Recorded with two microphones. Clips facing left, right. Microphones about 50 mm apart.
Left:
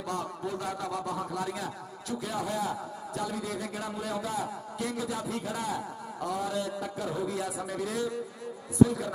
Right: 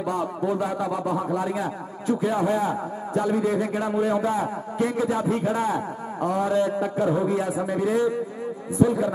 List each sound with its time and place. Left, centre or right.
0.0 s a man's voice: centre